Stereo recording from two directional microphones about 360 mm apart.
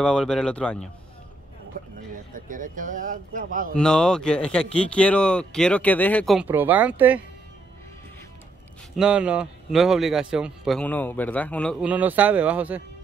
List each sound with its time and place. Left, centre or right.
0.0 s a man's voice: centre
1.8 s speech: right
3.7 s a man's voice: centre
8.9 s a man's voice: centre